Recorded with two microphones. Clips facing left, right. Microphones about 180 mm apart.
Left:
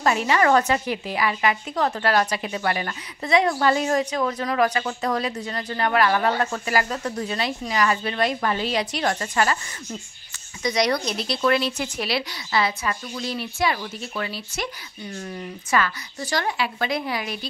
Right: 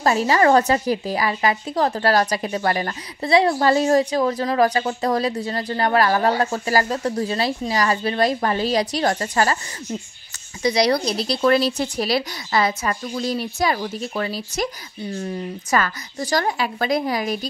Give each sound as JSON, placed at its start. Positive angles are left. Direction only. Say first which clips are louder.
{"t": 0.0, "sound": "a woman's voice", "louder": "right 3 dB", "side_deg": -35}
{"t": 10.6, "sound": "a woman's voice", "louder": "right 4 dB", "side_deg": -35}